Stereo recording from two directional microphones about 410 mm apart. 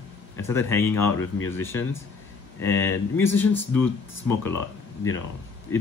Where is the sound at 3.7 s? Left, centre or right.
Left.